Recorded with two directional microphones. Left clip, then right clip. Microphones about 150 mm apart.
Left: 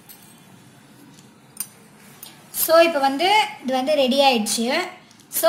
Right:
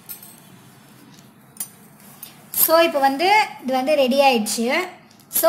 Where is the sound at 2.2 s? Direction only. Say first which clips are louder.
Right 3 dB; centre (ahead or behind).